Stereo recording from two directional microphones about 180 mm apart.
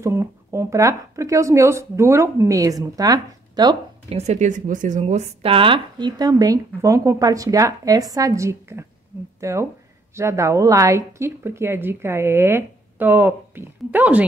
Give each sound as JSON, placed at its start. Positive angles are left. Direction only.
{"t": 0.0, "sound": "a woman's voice", "side_deg": -15}
{"t": 4.1, "sound": "a woman's voice", "side_deg": -40}